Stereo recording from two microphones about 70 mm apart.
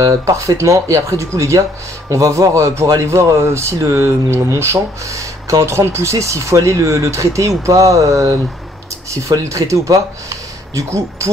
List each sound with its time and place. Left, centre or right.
0.0 s speech: right